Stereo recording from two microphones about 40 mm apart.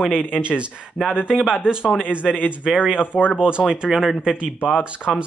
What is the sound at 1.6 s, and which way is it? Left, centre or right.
Speech, right.